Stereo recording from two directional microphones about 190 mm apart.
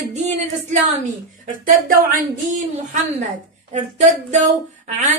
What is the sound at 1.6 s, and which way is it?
Speech, 45° right (ahead or behind).